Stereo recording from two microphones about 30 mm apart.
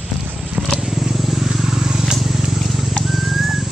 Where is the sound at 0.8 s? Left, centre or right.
Centre.